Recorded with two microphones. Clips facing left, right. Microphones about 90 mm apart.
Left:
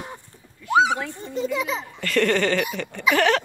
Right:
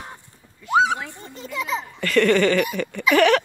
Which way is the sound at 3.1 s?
70° right (ahead or behind).